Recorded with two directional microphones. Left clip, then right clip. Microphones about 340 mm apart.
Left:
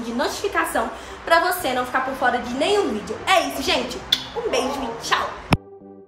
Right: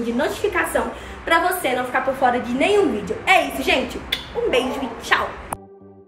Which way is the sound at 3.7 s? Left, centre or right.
Centre.